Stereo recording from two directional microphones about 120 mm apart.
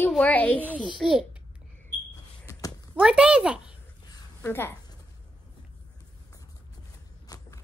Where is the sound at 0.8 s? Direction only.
5° right (ahead or behind).